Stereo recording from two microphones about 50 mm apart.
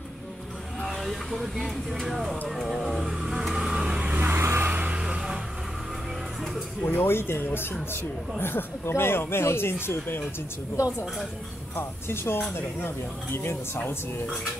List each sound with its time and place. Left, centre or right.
0.8 s speech: centre; by 4.2 s right
4.4 s vehicle: right
4.6 s vehicle: right
4.9 s vehicle: centre
6.8 s speech: left
7.1 s speech: left
11.7 s speech: left